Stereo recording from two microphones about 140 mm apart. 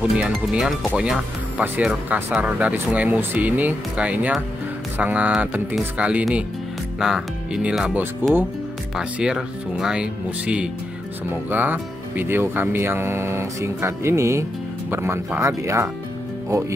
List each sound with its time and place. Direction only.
0.2 s speech: 5° right (ahead or behind)
8.9 s speech: 5° right (ahead or behind); by 15.9 s 20° right (ahead or behind)